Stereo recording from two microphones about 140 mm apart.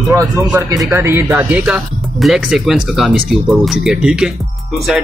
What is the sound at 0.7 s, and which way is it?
A man's voice, 20° right (ahead or behind).